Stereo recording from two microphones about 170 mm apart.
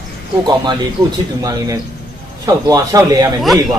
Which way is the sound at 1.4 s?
20° right (ahead or behind).